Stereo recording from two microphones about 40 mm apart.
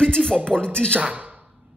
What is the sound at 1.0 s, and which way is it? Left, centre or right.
Speech, right.